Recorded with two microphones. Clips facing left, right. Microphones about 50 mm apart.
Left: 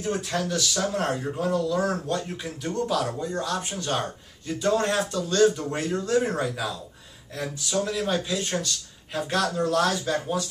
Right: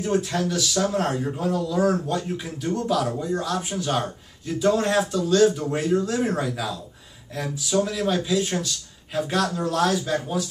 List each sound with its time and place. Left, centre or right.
0.0 s speech: centre